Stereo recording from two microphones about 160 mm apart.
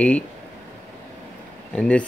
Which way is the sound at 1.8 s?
5° left (ahead or behind).